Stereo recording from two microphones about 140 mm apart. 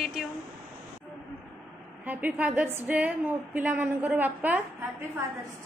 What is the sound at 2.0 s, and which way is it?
A woman's voice, 10° right (ahead or behind).